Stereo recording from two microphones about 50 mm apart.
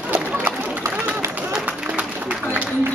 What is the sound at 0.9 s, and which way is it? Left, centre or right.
Run, right.